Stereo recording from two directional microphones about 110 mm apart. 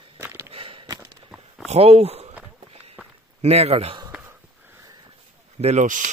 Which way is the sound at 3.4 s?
70° right (ahead or behind).